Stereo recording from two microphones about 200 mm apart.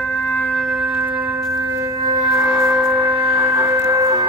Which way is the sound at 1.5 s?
15° right (ahead or behind).